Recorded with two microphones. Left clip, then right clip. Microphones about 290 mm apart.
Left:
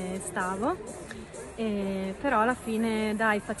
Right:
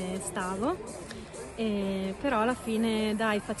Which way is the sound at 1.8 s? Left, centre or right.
Centre.